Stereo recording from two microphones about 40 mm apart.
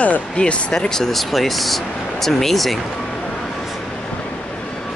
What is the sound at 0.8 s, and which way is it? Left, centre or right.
Speech, centre.